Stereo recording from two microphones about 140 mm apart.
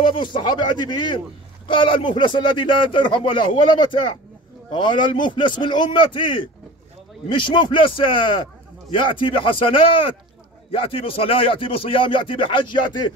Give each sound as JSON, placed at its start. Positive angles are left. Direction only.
{"t": 0.1, "sound": "speech", "side_deg": 35}
{"t": 4.7, "sound": "speech", "side_deg": 35}
{"t": 10.7, "sound": "speech", "side_deg": 40}